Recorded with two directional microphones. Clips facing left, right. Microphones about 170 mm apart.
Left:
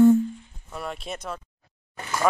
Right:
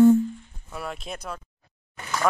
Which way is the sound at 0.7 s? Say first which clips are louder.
Left 1 dB; centre (ahead or behind).